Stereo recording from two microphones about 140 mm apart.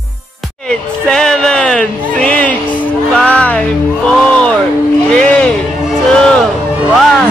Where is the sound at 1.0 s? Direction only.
5° left (ahead or behind).